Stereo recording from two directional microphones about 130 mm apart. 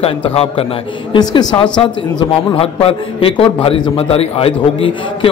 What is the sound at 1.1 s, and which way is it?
Speech, 35° left (ahead or behind).